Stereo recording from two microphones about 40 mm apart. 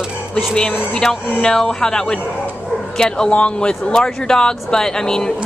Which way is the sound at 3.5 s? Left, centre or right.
Left.